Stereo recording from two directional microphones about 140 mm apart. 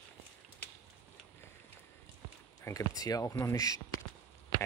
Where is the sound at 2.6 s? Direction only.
25° left (ahead or behind).